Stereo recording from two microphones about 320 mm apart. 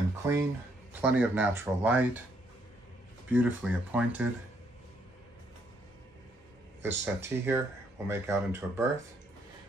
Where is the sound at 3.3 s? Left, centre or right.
Centre.